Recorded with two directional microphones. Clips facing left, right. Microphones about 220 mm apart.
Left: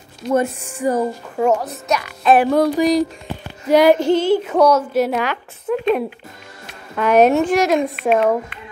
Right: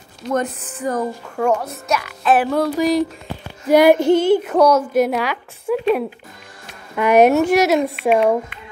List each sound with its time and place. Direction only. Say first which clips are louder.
0.3 s speech: left 3 dB; 10° left (ahead or behind)
1.6 s speech: left 1 dB; centre (ahead or behind)
2.5 s speech: left 3 dB; 15° left (ahead or behind)
2.8 s a woman's voice: left 1 dB; centre (ahead or behind)